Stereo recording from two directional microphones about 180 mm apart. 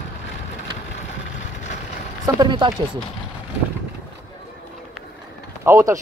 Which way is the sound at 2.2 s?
25° right (ahead or behind).